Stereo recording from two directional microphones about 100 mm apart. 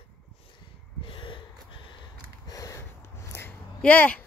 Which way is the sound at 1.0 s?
55° left (ahead or behind).